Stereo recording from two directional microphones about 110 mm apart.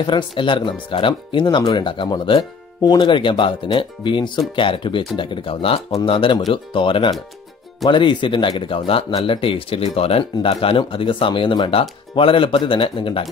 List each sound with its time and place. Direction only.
0.0 s speech: 45° left (ahead or behind)